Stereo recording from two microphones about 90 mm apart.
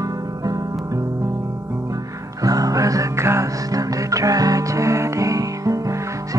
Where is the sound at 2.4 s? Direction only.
40° right (ahead or behind).